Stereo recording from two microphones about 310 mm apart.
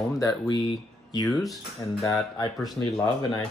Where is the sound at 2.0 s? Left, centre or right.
Centre.